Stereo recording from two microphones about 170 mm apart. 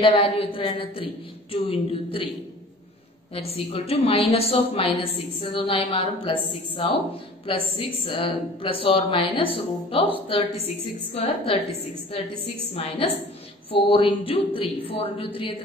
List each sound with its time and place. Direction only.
0.0 s a woman's voice: 35° left (ahead or behind)
3.3 s a woman's voice: 35° left (ahead or behind)
12.7 s a woman's voice: 35° left (ahead or behind)